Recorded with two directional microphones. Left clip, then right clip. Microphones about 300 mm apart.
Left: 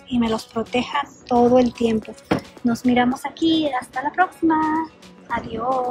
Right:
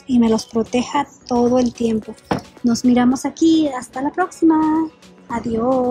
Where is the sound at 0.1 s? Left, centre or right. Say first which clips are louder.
Right 6 dB; centre.